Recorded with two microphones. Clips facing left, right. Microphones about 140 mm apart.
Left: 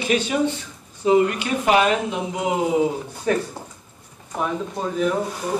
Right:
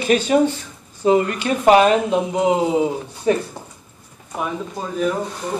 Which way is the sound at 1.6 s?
35° right (ahead or behind).